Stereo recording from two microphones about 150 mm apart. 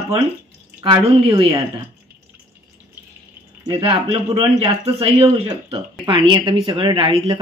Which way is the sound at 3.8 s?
40° right (ahead or behind).